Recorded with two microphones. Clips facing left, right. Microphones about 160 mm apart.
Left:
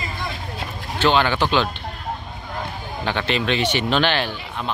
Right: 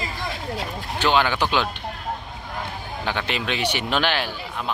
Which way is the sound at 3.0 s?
10° right (ahead or behind).